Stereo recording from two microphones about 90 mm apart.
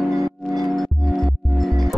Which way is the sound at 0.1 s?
40° right (ahead or behind).